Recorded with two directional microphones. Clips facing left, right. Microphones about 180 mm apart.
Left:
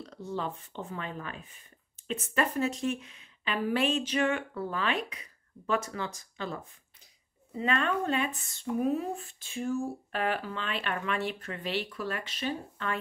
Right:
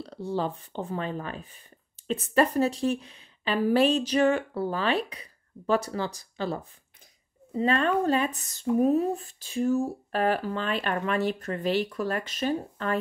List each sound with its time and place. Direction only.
0.0 s speech: 30° right (ahead or behind)